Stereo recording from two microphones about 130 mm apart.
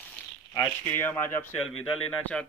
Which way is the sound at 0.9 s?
15° left (ahead or behind).